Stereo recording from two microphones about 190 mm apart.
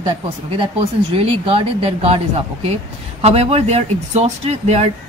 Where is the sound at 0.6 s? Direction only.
30° right (ahead or behind).